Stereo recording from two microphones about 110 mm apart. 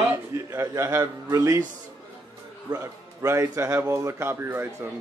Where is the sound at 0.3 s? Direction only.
25° right (ahead or behind).